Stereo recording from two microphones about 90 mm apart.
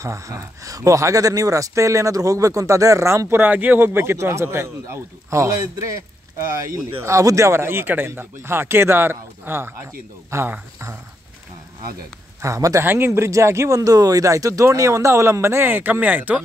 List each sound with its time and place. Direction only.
0.0 s speech: 35° right (ahead or behind)
12.4 s speech: 35° right (ahead or behind)
12.8 s speech: 25° right (ahead or behind)